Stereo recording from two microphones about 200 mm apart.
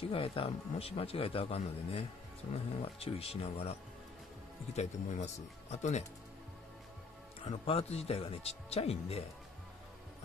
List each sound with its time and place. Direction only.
0.1 s a man's voice: 25° left (ahead or behind)
4.7 s speech: 35° left (ahead or behind)
7.6 s speech: 30° left (ahead or behind)